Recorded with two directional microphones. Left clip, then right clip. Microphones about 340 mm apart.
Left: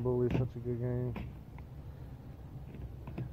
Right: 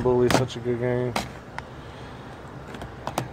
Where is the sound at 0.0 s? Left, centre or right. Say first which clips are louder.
Right 12 dB; centre.